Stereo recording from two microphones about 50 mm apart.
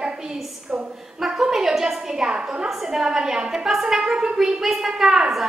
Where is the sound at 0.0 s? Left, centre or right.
Centre.